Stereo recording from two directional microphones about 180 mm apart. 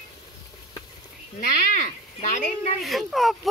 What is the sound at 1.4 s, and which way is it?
Speech, 45° left (ahead or behind).